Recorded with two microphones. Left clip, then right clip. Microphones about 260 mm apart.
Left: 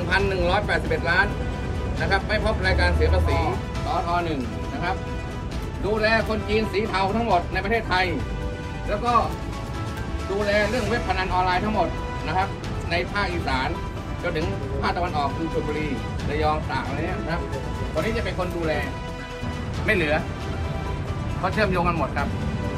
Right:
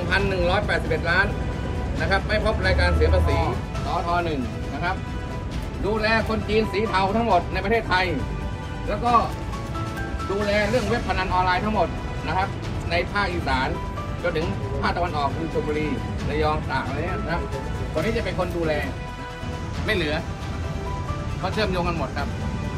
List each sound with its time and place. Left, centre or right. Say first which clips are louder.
0.1 s speech: even; centre
5.9 s speech: left 1 dB; centre
10.4 s speech: even; centre
18.0 s speech: right 4 dB; centre
19.9 s speech: left 3 dB; centre
21.5 s speech: left 2 dB; centre